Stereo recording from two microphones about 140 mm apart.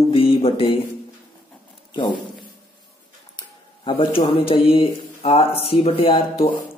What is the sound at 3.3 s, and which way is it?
Speech, 40° left (ahead or behind).